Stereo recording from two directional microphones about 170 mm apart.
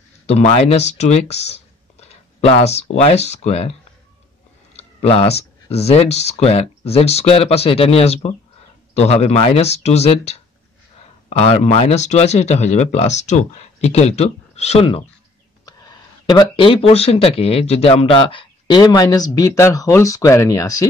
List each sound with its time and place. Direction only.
0.3 s speech: 40° left (ahead or behind)
4.7 s clicking: 35° left (ahead or behind)
5.7 s speech: 35° left (ahead or behind); by 20.8 s 20° left (ahead or behind)